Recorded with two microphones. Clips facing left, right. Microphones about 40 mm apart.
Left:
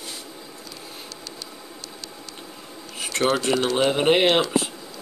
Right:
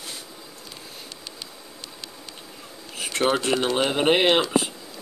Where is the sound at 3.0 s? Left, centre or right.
Centre.